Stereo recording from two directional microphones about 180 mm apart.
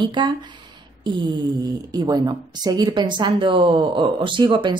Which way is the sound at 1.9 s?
20° right (ahead or behind).